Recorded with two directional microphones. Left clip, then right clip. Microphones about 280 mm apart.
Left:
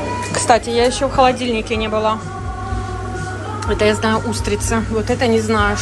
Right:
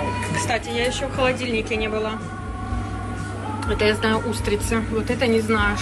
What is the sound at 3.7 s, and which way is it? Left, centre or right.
A woman's voice, centre.